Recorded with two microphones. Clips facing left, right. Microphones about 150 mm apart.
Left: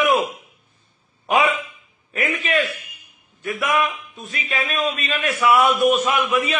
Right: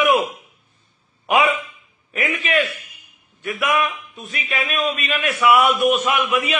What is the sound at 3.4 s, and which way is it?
A man's voice, 30° left (ahead or behind).